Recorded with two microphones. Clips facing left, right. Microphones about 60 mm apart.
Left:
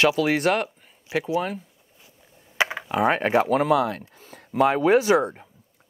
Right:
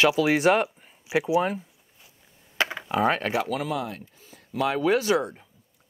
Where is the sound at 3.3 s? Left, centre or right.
Left.